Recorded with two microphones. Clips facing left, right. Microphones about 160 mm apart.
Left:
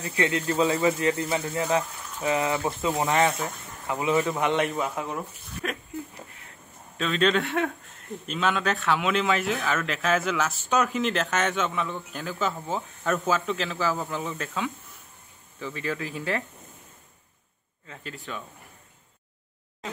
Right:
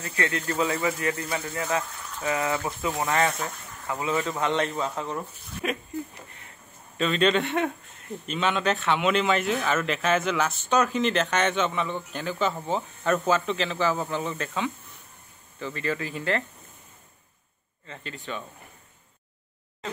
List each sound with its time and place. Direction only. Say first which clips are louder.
0.0 s speech: left 3 dB; 20° left (ahead or behind)
5.6 s speech: right 3 dB; 5° right (ahead or behind)
7.0 s speech: right 1 dB; centre (ahead or behind)
17.8 s speech: right 1 dB; 5° left (ahead or behind)